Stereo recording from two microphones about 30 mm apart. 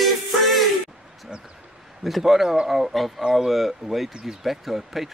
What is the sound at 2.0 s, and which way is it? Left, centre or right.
Speech, centre.